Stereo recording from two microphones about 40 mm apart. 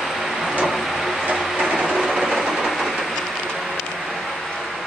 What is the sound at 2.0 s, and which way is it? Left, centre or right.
Train, centre.